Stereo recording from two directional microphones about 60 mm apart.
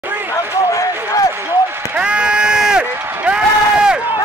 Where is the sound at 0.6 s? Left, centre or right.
Left.